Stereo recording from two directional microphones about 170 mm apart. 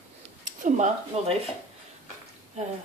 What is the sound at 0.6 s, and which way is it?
Speech, 45° right (ahead or behind).